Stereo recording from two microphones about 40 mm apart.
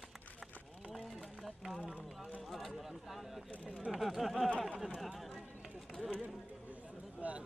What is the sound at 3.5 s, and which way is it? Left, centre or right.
Speech, left.